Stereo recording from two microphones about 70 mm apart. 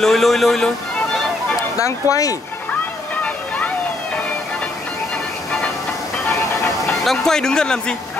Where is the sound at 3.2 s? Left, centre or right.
Left.